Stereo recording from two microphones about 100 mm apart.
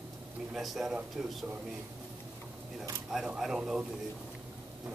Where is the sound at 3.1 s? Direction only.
5° right (ahead or behind).